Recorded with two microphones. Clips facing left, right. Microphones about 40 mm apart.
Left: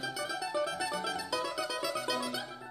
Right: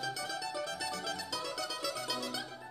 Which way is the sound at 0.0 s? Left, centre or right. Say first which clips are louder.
Left 2 dB; centre.